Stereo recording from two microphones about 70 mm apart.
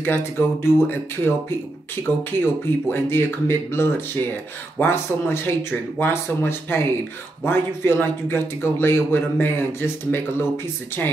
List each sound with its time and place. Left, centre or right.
0.0 s speech: left